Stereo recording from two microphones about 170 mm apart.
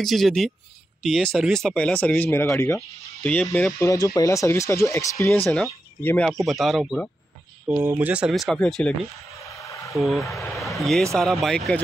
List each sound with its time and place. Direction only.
0.0 s speech: centre (ahead or behind)
9.6 s a sound: 20° left (ahead or behind)
9.9 s speech: centre (ahead or behind)